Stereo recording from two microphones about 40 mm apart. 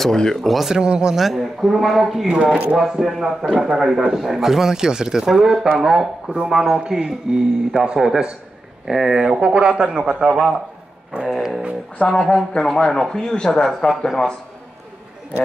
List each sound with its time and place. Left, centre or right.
0.1 s speech: centre
0.4 s speech: centre
0.7 s a man's voice: centre
1.1 s speech: centre
2.4 s a man's voice: centre
11.2 s speech: centre
12.1 s speech: centre